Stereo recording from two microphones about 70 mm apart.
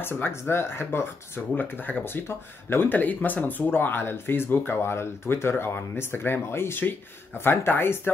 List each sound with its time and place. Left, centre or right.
0.0 s speech: left